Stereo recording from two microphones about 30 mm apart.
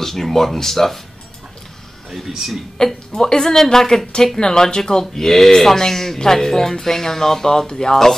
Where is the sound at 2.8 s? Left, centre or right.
Left.